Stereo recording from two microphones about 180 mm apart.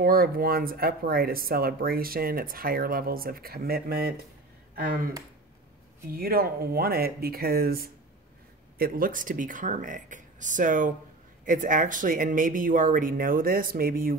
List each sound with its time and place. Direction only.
0.0 s speech: 55° right (ahead or behind)